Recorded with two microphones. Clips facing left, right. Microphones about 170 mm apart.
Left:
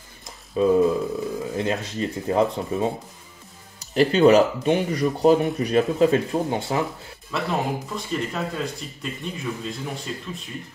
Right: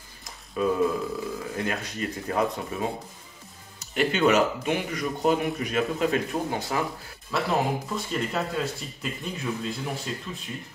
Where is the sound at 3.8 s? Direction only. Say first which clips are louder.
Left 6 dB; 35° left (ahead or behind).